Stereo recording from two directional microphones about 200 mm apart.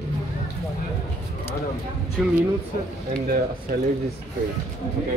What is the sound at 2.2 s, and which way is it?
Speech, centre (ahead or behind).